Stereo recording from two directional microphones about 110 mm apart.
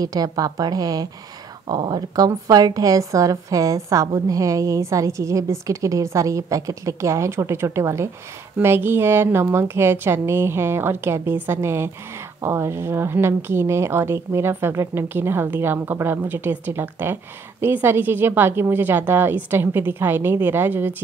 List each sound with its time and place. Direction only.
0.0 s a woman's voice: 35° right (ahead or behind); by 20.9 s 20° right (ahead or behind)